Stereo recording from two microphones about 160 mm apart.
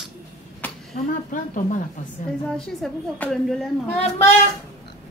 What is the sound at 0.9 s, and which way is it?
Speech, 55° left (ahead or behind).